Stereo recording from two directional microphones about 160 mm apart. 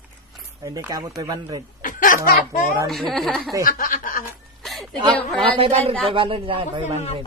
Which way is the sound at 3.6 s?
60° left (ahead or behind).